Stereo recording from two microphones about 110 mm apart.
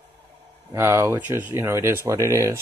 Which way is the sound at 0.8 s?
20° right (ahead or behind).